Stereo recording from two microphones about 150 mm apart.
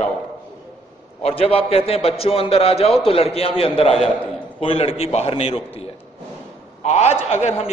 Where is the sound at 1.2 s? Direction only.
40° left (ahead or behind).